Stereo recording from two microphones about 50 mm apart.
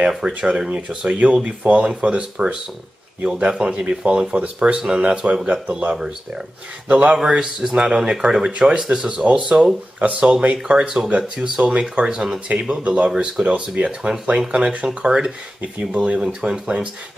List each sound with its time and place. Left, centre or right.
0.4 s speech: right
5.9 s speech: centre
6.9 s speech: right
7.3 s speech: centre
11.6 s speech: right
11.9 s speech: centre